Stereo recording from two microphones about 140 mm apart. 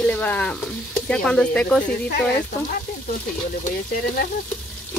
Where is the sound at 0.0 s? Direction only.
10° left (ahead or behind).